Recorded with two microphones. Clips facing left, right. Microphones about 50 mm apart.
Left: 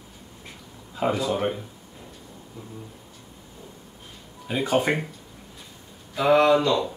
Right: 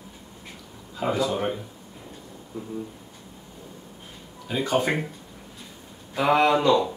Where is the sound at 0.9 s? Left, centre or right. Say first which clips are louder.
Left 1 dB; centre.